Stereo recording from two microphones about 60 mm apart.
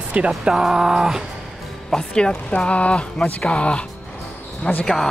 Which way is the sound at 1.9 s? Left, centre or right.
Centre.